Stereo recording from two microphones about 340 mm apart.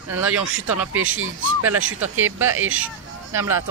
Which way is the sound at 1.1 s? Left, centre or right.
Right.